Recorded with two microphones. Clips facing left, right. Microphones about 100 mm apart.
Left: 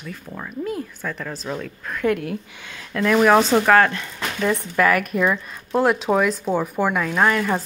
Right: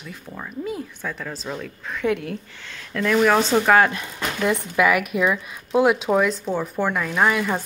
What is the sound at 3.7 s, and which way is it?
Speech, 15° right (ahead or behind).